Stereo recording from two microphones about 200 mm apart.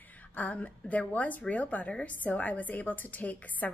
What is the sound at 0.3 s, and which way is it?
A woman's voice, 10° left (ahead or behind).